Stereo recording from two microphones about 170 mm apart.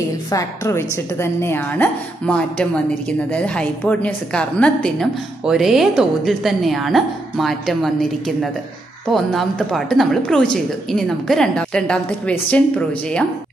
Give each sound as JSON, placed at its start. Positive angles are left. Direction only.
{"t": 0.3, "sound": "a woman's voice", "side_deg": 20}